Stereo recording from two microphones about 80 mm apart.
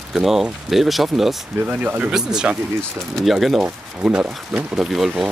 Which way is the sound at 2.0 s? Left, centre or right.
Centre.